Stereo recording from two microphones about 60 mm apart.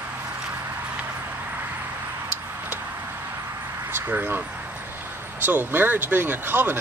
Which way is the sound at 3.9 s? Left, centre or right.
Right.